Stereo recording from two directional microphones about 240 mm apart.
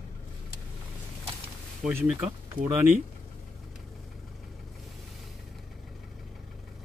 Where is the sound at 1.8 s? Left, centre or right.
Centre.